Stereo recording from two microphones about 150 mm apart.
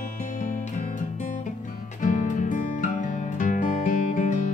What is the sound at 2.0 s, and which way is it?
Music, 55° left (ahead or behind).